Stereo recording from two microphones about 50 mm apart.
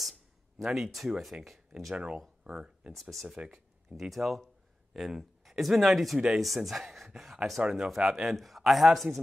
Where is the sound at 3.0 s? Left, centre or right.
Centre.